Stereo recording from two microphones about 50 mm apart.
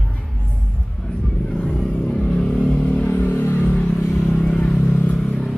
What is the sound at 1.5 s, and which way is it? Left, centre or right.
Vehicle, centre.